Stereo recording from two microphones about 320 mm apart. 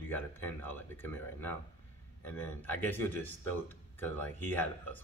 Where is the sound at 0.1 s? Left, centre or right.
Centre.